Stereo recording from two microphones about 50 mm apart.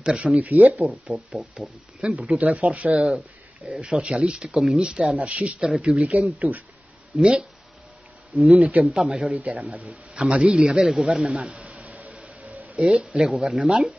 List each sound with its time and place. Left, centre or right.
0.0 s speech: right
0.4 s speech: right
1.1 s speech: centre
2.1 s a man's voice: right
7.2 s speech: centre
8.4 s speech: centre
8.6 s a man's voice: right
8.9 s speech: centre
9.4 s a man's voice: right
11.3 s a sound: right
13.2 s speech: centre